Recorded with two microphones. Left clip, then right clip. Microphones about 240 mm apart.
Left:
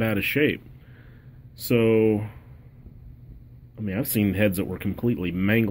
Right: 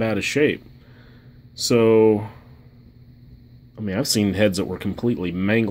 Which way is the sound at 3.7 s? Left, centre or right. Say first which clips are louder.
Right 6 dB; centre.